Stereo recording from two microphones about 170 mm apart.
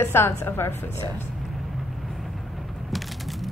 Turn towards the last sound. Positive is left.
turn(degrees=0)  # may be behind; listen again after turning